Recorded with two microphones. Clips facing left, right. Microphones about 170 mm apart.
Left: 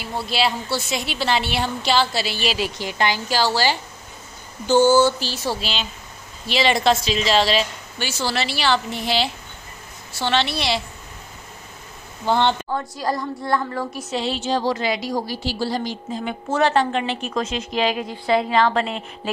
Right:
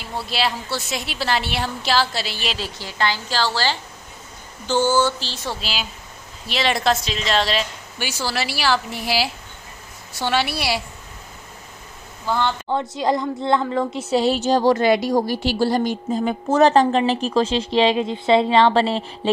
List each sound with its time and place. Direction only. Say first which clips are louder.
0.0 s a woman's voice: left 2 dB; centre (ahead or behind)
2.6 s a woman's voice: left 2 dB; 15° left (ahead or behind)
8.0 s a woman's voice: left 1 dB; 10° right (ahead or behind)
12.3 s a woman's voice: left 3 dB; 25° left (ahead or behind)
12.6 s a woman's voice: right 3 dB; 20° right (ahead or behind)
14.1 s a woman's voice: right 5 dB; 40° right (ahead or behind)
16.3 s a woman's voice: right 4 dB; 40° right (ahead or behind)